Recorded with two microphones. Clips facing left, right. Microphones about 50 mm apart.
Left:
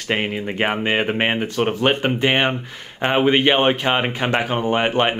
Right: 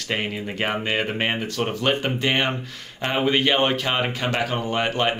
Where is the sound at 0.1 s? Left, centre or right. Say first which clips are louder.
Left 5 dB; left.